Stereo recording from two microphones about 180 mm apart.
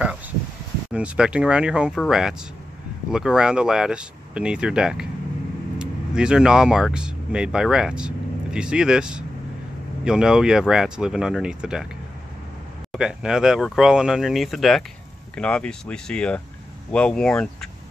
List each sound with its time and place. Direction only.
0.9 s speech: 5° right (ahead or behind)
12.9 s speech: 5° right (ahead or behind)